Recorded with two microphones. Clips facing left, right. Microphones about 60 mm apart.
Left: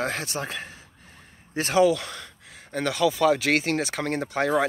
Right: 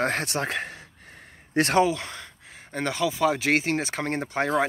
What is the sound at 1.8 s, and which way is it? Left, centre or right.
Speech, right.